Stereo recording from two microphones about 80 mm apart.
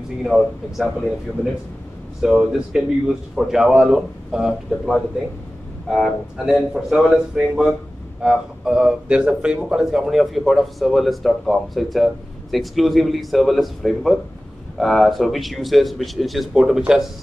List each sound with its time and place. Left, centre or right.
0.2 s a man's voice: centre
2.2 s a man's voice: centre